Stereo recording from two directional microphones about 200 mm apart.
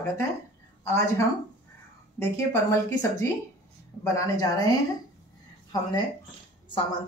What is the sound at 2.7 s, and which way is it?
A woman's voice, 15° left (ahead or behind).